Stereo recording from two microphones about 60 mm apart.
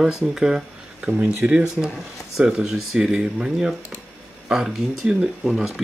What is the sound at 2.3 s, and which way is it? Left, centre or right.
Speech, centre.